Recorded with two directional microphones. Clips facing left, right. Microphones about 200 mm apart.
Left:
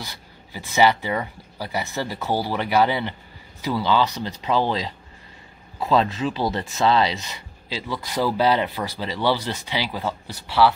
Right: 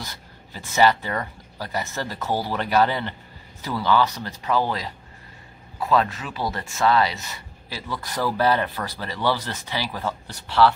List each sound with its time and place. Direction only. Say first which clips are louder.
0.0 s speech: even; 10° left (ahead or behind)